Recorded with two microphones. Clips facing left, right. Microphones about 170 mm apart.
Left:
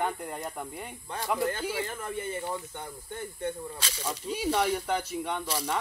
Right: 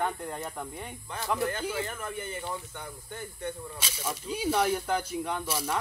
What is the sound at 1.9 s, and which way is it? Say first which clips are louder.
Speech: left 2 dB; 30° left (ahead or behind).